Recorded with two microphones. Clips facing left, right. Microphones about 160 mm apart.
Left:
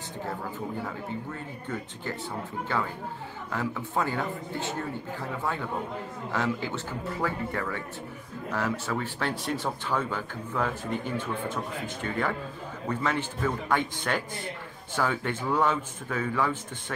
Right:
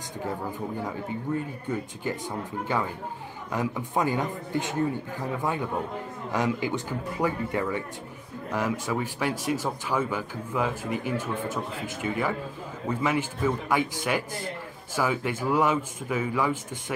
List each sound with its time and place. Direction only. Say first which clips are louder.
1.7 s speech: right 4 dB; 15° right (ahead or behind)